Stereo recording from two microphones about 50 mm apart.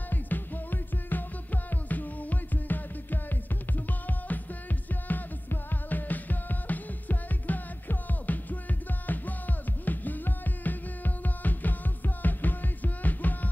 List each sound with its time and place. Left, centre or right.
0.1 s music: left
5.0 s music: left